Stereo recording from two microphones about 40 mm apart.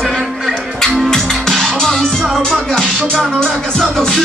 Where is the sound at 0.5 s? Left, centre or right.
Centre.